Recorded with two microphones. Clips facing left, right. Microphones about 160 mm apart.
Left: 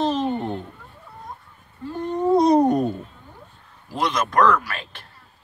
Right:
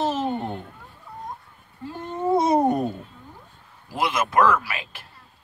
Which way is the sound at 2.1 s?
5° right (ahead or behind).